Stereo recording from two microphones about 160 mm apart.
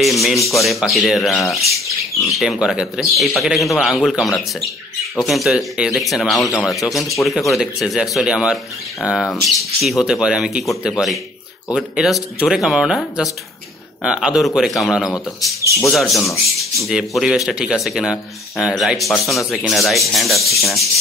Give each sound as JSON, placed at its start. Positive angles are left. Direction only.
{"t": 0.0, "sound": "speech", "side_deg": 0}
{"t": 7.0, "sound": "speech", "side_deg": 20}
{"t": 7.2, "sound": "speech", "side_deg": 0}